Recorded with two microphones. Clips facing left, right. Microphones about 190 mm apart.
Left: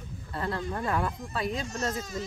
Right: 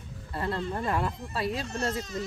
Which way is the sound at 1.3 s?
5° right (ahead or behind).